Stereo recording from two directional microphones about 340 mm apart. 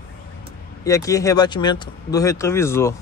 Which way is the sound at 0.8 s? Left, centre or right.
Centre.